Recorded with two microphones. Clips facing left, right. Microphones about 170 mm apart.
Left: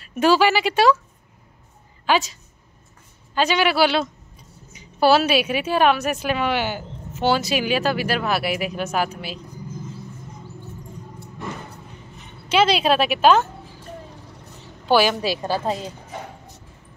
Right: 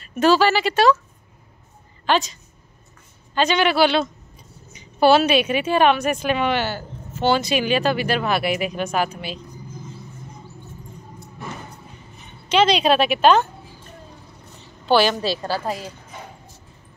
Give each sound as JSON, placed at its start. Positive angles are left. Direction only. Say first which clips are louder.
{"t": 0.0, "sound": "a woman's voice", "louder": "right 1 dB", "side_deg": 10}
{"t": 2.0, "sound": "a woman's voice", "louder": "even", "side_deg": 10}
{"t": 3.3, "sound": "a woman's voice", "louder": "right 1 dB", "side_deg": 5}
{"t": 12.4, "sound": "a woman's voice", "louder": "right 1 dB", "side_deg": 5}
{"t": 14.9, "sound": "a woman's voice", "louder": "even", "side_deg": 10}